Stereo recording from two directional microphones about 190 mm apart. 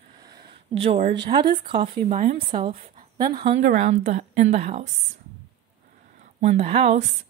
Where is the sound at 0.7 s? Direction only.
30° right (ahead or behind).